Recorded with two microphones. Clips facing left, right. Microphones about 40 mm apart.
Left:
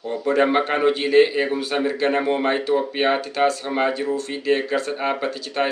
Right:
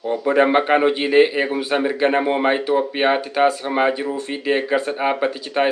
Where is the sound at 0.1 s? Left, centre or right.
Right.